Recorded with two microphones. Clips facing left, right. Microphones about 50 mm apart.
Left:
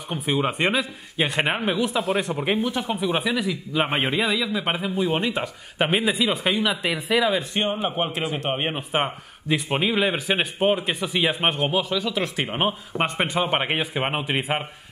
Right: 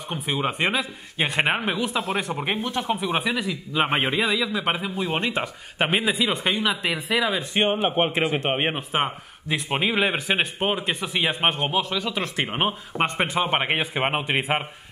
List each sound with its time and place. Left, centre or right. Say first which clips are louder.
0.1 s speech: left 2 dB; centre
7.9 s speech: right 4 dB; right
8.7 s speech: even; centre